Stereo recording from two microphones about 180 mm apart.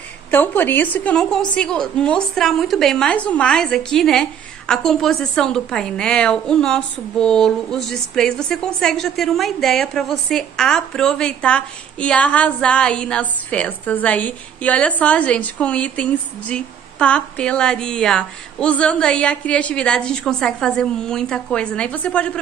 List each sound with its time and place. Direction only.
0.3 s a woman's voice: 10° left (ahead or behind)